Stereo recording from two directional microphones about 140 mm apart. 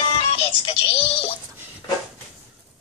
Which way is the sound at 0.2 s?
40° left (ahead or behind).